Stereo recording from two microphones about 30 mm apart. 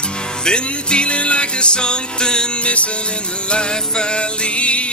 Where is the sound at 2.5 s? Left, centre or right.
Left.